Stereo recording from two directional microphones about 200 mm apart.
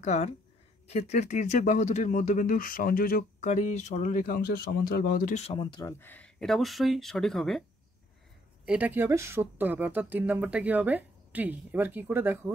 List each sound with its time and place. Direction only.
0.0 s speech: 35° left (ahead or behind); by 7.6 s centre (ahead or behind)
8.6 s speech: 5° right (ahead or behind)